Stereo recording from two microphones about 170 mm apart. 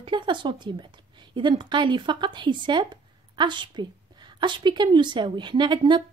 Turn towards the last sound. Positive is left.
turn(degrees=-30)  # may be behind; listen again after turning